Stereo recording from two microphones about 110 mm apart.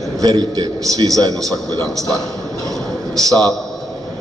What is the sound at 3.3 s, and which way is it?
Speech, 35° right (ahead or behind).